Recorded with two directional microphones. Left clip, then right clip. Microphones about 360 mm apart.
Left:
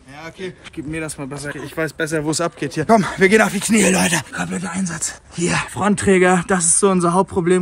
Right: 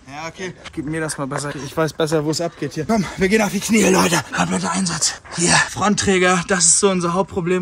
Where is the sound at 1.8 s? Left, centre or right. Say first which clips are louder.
Right 3 dB; centre.